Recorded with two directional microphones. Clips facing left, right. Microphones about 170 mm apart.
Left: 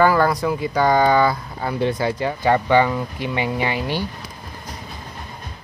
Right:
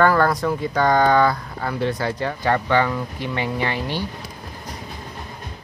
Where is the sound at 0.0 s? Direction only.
5° left (ahead or behind).